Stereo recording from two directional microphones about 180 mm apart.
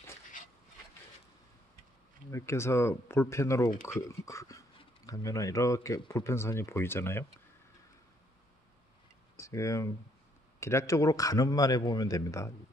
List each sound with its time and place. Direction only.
2.3 s speech: 15° left (ahead or behind)
9.4 s a man's voice: 15° left (ahead or behind)